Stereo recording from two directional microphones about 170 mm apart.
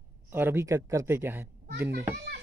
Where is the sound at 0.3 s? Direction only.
15° right (ahead or behind).